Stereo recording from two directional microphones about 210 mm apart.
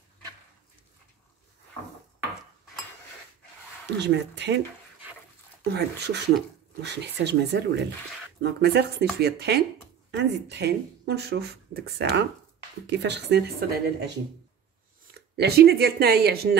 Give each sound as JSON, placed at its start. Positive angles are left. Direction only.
{"t": 4.0, "sound": "speech", "side_deg": -55}
{"t": 5.7, "sound": "speech", "side_deg": -55}
{"t": 15.3, "sound": "speech", "side_deg": -50}